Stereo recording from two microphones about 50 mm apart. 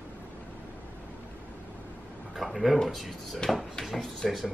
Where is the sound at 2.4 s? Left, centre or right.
Centre.